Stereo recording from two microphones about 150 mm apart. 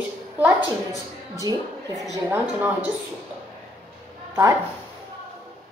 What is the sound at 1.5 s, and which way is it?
Speech, 30° right (ahead or behind).